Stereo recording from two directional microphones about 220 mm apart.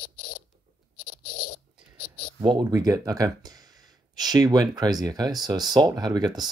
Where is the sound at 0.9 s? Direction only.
90° left.